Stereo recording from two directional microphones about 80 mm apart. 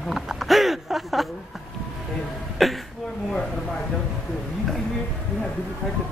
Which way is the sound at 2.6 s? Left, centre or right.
Centre.